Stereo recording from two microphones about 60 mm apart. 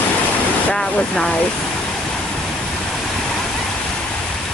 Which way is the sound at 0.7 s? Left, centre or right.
Centre.